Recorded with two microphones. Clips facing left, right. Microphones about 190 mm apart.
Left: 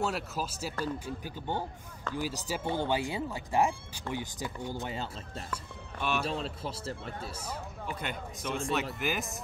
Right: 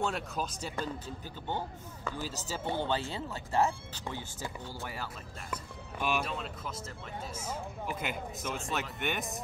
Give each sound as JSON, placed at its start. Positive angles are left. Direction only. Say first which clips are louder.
{"t": 0.0, "sound": "speech", "louder": "left 1 dB", "side_deg": 5}
{"t": 5.5, "sound": "speech", "louder": "even", "side_deg": -10}
{"t": 6.2, "sound": "speech", "louder": "left 4 dB", "side_deg": 30}
{"t": 7.9, "sound": "speech", "louder": "even", "side_deg": -5}